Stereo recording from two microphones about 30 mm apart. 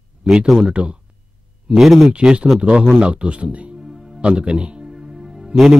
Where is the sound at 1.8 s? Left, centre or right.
Centre.